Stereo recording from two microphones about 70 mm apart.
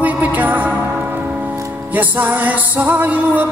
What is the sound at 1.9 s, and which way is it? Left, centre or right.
Music, right.